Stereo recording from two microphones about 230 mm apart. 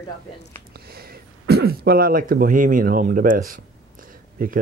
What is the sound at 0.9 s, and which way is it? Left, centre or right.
Speech, right.